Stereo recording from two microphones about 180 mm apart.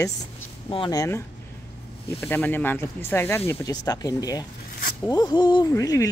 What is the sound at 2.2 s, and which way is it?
Speech, 10° left (ahead or behind).